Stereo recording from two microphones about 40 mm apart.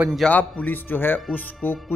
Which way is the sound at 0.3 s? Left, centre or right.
Left.